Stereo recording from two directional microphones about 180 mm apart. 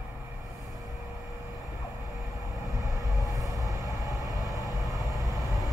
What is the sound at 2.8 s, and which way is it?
Train, 20° right (ahead or behind).